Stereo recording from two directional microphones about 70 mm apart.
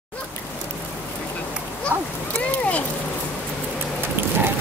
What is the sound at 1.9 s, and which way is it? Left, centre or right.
Speech, right.